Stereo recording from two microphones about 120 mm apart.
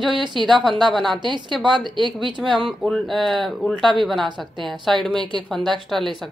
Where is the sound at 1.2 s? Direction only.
40° right (ahead or behind).